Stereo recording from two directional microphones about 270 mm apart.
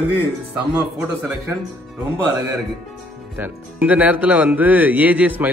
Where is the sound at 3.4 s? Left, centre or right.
Centre.